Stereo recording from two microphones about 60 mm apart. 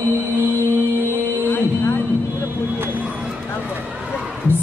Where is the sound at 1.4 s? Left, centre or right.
Left.